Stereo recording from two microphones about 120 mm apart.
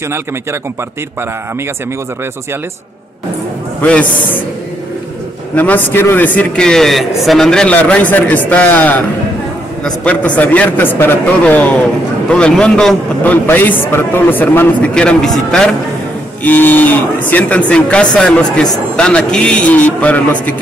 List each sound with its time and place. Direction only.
3.8 s a man's voice: 10° left (ahead or behind)
5.6 s a man's voice: 15° left (ahead or behind)
16.4 s a man's voice: 15° left (ahead or behind)